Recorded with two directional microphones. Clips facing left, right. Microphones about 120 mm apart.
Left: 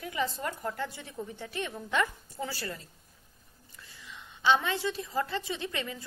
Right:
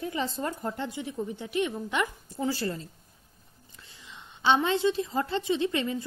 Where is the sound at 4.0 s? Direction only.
25° right (ahead or behind).